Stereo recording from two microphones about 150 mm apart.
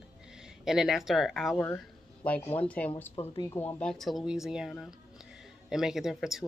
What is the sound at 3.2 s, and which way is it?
Speech, 45° left (ahead or behind).